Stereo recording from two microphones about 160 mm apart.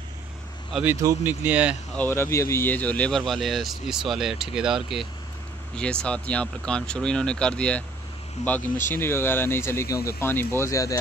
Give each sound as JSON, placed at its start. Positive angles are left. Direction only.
{"t": 1.0, "sound": "speech", "side_deg": -10}
{"t": 2.0, "sound": "speech", "side_deg": 15}